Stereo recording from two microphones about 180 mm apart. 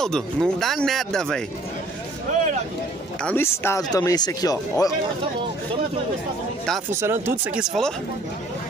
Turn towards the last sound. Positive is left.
turn(degrees=-10)  # may be behind; listen again after turning